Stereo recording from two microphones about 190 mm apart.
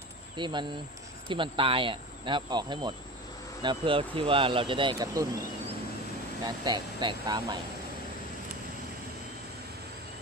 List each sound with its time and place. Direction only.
0.4 s speech: 25° right (ahead or behind)
6.4 s speech: 20° right (ahead or behind)